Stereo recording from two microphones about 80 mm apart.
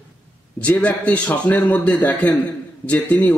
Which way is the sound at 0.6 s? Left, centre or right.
Centre.